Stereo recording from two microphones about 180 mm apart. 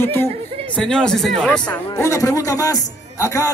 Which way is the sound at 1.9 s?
15° left (ahead or behind).